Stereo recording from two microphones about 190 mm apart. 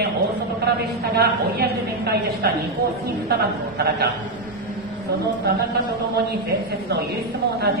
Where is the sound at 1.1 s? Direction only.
55° right (ahead or behind).